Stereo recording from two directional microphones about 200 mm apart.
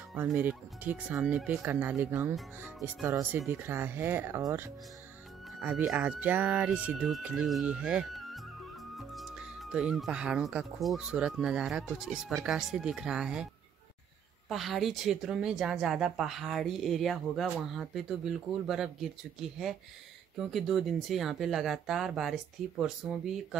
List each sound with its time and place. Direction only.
0.1 s speech: 10° right (ahead or behind)
14.5 s speech: centre (ahead or behind)